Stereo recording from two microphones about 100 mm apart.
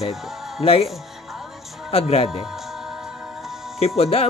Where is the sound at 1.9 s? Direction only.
85° left.